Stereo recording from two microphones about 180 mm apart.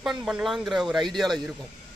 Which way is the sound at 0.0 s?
Centre (ahead or behind).